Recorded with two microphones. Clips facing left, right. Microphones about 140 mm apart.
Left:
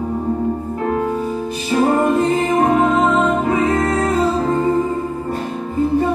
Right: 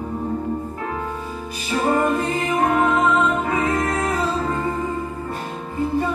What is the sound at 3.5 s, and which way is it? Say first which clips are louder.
Music: left 5 dB; 25° left (ahead or behind).